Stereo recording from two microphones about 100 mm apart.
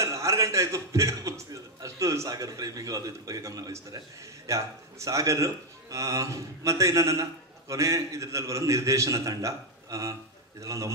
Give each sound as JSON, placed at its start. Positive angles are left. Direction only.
{"t": 0.0, "sound": "speech", "side_deg": -30}